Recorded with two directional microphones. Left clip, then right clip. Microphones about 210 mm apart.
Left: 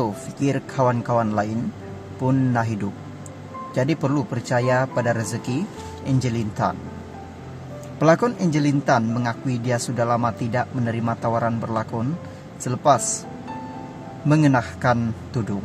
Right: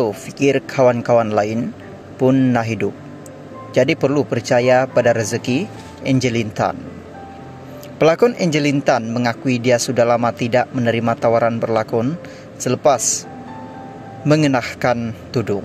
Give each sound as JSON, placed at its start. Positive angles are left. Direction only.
{"t": 0.0, "sound": "speech", "side_deg": -15}
{"t": 8.0, "sound": "speech", "side_deg": -15}
{"t": 14.2, "sound": "speech", "side_deg": -15}